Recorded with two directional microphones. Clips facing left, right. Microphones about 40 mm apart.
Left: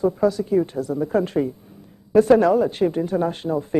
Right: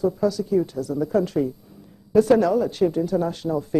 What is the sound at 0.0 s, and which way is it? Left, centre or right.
A woman's voice, left.